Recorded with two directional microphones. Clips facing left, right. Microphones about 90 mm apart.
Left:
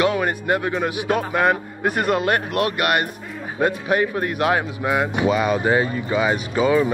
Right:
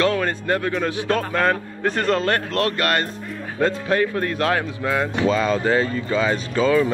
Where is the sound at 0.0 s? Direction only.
15° left (ahead or behind).